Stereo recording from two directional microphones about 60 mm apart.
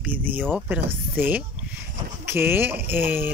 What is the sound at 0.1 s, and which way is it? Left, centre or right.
Speech, right.